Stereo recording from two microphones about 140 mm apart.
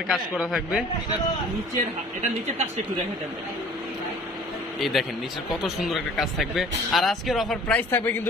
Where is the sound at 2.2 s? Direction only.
55° right (ahead or behind).